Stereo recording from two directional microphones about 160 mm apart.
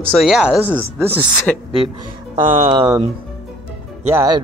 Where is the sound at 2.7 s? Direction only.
25° right (ahead or behind).